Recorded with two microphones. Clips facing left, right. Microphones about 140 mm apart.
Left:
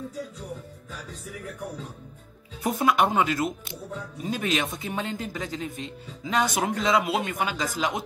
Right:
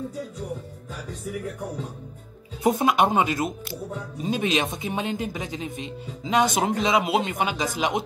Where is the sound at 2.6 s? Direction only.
20° right (ahead or behind).